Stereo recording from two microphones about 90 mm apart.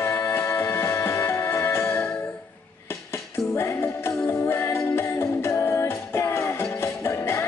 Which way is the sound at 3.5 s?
25° left (ahead or behind).